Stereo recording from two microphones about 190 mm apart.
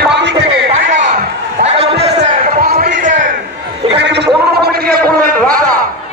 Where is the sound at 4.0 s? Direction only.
65° right (ahead or behind).